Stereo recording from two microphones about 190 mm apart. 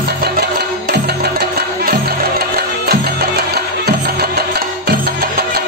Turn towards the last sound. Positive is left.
turn(degrees=-55)  # may be behind; listen again after turning